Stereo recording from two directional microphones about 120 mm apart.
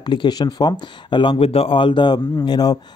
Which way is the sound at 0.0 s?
40° left (ahead or behind).